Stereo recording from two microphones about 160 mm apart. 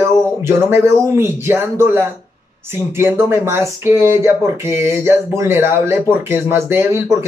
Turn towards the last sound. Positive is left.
turn(degrees=-15)  # may be behind; listen again after turning